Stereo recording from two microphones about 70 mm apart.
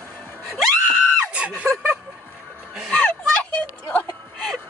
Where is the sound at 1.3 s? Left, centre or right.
Centre.